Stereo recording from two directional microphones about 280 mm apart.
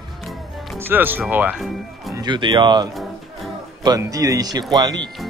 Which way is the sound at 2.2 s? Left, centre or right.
Centre.